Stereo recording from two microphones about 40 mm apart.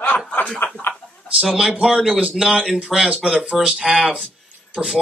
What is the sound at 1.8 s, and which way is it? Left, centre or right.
Speech, centre.